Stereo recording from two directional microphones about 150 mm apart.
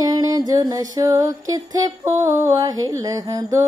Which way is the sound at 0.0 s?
25° right (ahead or behind).